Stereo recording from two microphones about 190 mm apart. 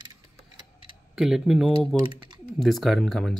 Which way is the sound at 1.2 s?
5° right (ahead or behind).